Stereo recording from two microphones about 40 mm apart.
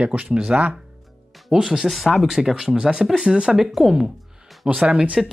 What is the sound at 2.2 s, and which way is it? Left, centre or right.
Speech, centre.